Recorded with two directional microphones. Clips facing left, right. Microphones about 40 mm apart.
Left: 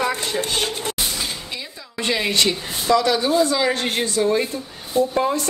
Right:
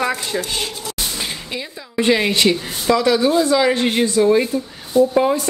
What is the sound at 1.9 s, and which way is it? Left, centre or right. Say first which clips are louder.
Speech: right 5 dB; centre.